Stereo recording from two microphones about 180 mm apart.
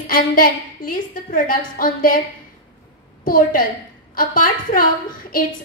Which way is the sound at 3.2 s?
50° left (ahead or behind).